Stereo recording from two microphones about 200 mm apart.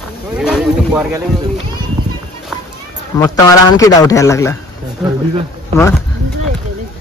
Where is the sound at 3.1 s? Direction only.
15° left (ahead or behind).